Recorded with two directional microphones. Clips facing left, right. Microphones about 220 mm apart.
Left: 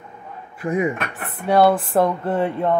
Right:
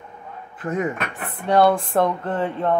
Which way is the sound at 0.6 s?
10° left (ahead or behind).